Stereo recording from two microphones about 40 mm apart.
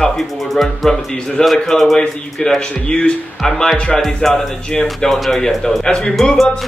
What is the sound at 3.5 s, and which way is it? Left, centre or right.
Speech, centre.